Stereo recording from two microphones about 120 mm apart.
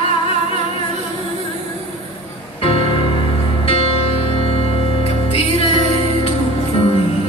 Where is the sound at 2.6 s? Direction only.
50° left (ahead or behind).